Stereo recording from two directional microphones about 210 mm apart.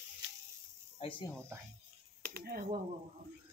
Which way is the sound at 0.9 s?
25° left (ahead or behind).